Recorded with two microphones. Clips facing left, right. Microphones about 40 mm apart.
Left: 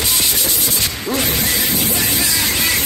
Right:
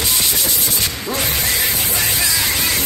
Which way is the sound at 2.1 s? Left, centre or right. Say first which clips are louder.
Even; centre.